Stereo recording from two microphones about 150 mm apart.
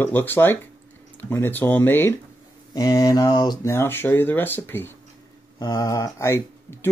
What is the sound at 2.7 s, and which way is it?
Mantra, 25° left (ahead or behind).